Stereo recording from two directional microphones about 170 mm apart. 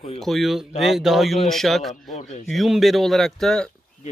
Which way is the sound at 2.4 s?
Centre (ahead or behind).